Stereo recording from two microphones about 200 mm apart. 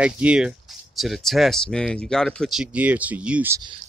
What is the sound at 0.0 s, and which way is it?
Speech, 5° right (ahead or behind).